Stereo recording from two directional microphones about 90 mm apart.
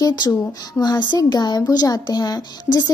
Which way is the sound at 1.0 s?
50° left (ahead or behind).